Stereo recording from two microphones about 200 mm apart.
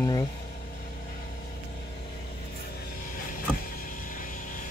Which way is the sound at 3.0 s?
45° left (ahead or behind).